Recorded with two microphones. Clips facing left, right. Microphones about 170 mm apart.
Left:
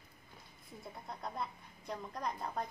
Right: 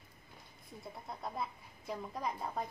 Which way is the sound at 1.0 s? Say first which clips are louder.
Right 1 dB; centre (ahead or behind).